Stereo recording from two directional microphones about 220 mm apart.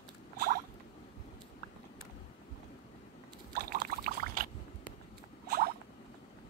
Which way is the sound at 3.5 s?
45° right (ahead or behind).